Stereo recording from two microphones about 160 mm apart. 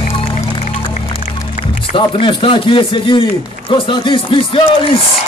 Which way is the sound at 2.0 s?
35° left (ahead or behind).